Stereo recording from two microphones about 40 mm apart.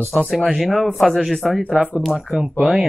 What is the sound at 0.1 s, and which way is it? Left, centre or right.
Speech, centre.